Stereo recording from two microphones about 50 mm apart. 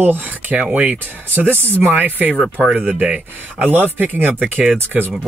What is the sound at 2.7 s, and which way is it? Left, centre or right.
Speech, right.